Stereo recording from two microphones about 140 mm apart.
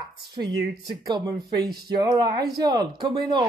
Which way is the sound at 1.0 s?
30° right (ahead or behind).